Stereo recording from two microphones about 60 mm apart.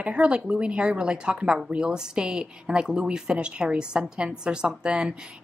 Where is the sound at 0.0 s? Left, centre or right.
Centre.